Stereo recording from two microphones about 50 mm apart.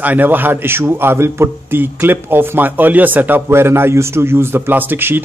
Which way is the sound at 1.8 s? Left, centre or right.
Right.